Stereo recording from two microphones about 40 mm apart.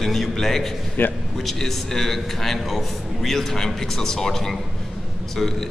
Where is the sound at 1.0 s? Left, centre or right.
Left.